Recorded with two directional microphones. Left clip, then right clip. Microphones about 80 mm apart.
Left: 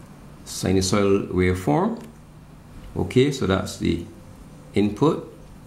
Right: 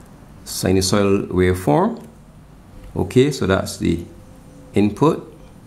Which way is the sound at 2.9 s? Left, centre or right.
Right.